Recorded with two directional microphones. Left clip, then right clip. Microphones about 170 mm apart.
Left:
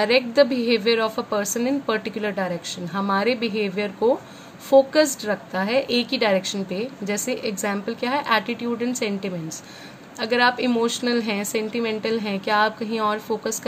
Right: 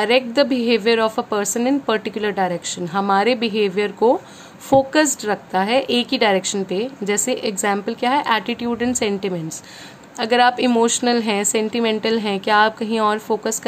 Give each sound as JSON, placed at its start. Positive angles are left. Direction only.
{"t": 0.0, "sound": "a woman's voice", "side_deg": -20}